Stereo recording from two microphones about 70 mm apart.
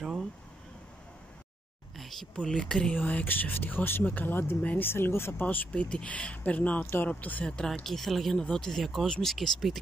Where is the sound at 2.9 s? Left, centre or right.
Left.